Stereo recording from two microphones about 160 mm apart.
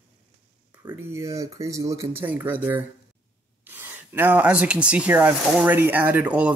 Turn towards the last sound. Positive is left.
turn(degrees=-10)  # may be behind; listen again after turning